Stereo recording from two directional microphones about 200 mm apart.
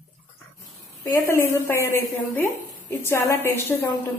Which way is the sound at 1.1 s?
10° left (ahead or behind).